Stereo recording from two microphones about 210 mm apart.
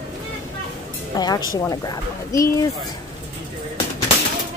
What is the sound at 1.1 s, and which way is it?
A woman's voice, 20° left (ahead or behind).